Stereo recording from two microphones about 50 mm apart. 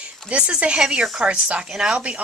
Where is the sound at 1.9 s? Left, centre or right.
Right.